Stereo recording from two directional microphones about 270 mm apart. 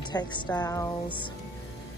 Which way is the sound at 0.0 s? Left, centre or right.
Centre.